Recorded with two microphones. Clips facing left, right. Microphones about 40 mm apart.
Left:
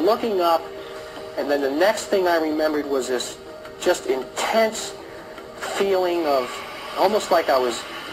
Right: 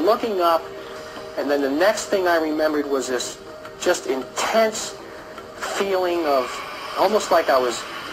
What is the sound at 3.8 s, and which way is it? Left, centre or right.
Speech, left.